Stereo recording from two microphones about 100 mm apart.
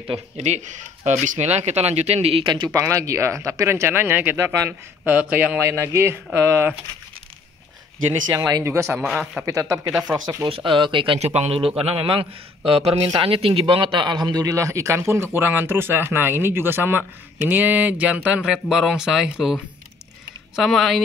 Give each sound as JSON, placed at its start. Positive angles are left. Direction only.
{"t": 0.1, "sound": "a man's voice", "side_deg": -75}
{"t": 1.4, "sound": "speech", "side_deg": -90}
{"t": 2.4, "sound": "speech", "side_deg": -50}
{"t": 2.7, "sound": "speech", "side_deg": -35}
{"t": 5.6, "sound": "speech", "side_deg": -25}
{"t": 8.3, "sound": "speech", "side_deg": -40}
{"t": 8.6, "sound": "speech", "side_deg": -25}
{"t": 8.9, "sound": "a man's voice", "side_deg": 0}
{"t": 9.5, "sound": "speech", "side_deg": -30}
{"t": 10.1, "sound": "speech", "side_deg": -45}
{"t": 10.5, "sound": "a man's voice", "side_deg": -55}
{"t": 13.2, "sound": "a man's voice", "side_deg": -70}